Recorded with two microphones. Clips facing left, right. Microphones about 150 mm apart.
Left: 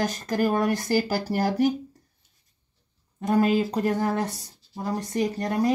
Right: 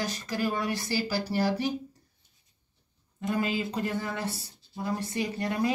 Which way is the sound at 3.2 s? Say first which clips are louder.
Left 8 dB; 50° left (ahead or behind).